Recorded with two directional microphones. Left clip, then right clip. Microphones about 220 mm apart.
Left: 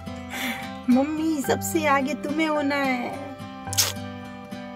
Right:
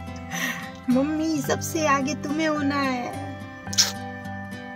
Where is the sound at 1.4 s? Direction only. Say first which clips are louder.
Left 2 dB; 10° left (ahead or behind).